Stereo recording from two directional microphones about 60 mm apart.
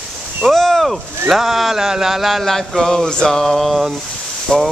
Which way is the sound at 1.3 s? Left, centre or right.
Centre.